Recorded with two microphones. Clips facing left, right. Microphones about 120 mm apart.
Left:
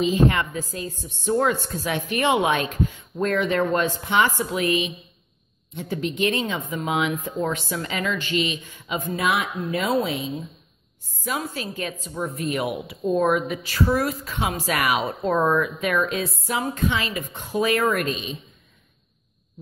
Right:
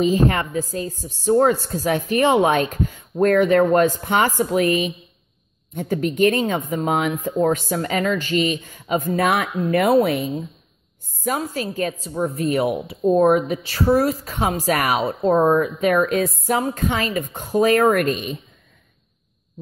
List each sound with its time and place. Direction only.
0.0 s a woman's voice: 40° right (ahead or behind); by 10.3 s 60° right (ahead or behind)
11.2 s speech: 40° right (ahead or behind)